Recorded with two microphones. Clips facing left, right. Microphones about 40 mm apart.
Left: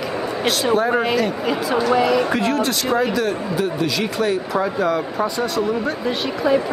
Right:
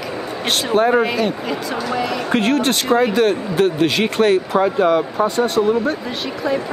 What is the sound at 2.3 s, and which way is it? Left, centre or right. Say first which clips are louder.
Speech: right 3 dB; right.